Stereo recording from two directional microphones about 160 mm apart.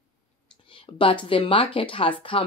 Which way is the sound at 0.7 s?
35° left (ahead or behind).